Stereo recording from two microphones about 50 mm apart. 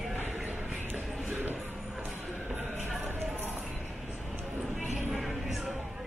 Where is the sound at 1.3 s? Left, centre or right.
Right.